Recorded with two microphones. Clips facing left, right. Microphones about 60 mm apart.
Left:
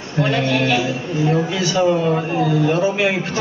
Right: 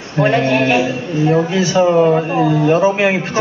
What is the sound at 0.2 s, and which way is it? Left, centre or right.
Speech, right.